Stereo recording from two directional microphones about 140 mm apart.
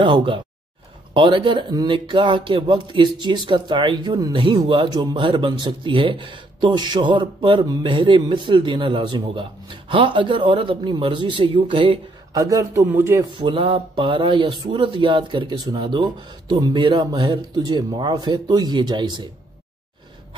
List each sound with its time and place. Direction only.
0.0 s speech: 40° right (ahead or behind)
12.4 s a man's voice: 25° right (ahead or behind)
13.2 s speech: 35° right (ahead or behind)